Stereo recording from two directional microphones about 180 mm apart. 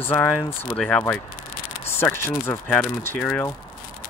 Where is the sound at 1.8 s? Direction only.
15° left (ahead or behind).